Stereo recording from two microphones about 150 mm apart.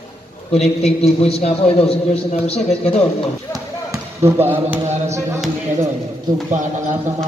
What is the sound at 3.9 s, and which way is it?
Speech, 15° right (ahead or behind).